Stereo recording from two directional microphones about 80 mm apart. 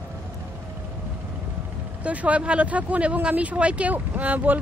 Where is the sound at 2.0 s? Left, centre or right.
Centre.